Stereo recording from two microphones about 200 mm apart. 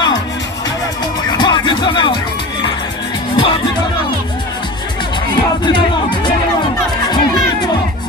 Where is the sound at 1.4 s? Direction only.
20° left (ahead or behind).